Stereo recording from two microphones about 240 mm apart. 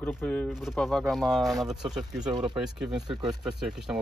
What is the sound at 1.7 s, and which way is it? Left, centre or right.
Speech, centre.